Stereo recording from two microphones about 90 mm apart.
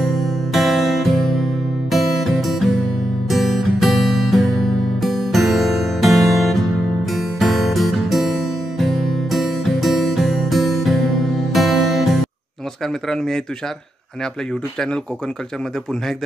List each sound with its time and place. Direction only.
0.0 s music: centre (ahead or behind)
13.1 s speech: 5° left (ahead or behind)